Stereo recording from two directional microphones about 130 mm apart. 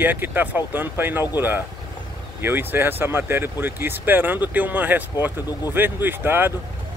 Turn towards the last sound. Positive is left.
turn(degrees=-15)  # may be behind; listen again after turning